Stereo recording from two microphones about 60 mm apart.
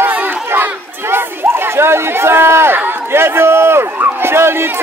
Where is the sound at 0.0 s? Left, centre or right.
Right.